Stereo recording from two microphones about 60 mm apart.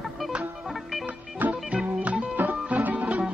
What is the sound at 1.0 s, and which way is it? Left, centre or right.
Music, right.